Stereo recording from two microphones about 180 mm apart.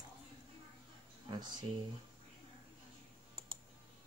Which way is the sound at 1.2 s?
25° right (ahead or behind).